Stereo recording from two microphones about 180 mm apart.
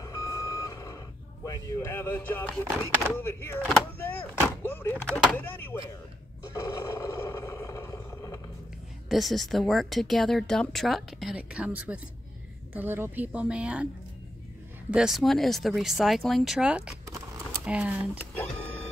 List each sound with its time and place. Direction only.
0.0 s reversing beeps: 15° left (ahead or behind)
1.4 s speech: 15° left (ahead or behind)
4.6 s a sound: 10° left (ahead or behind)
5.1 s speech: 10° left (ahead or behind)
6.4 s roar: 15° left (ahead or behind)
9.1 s a woman's voice: centre (ahead or behind)
14.9 s a woman's voice: 5° right (ahead or behind)